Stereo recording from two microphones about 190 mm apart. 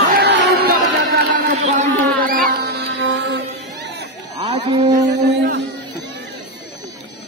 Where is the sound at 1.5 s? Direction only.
40° right (ahead or behind); by 4.1 s 65° right (ahead or behind).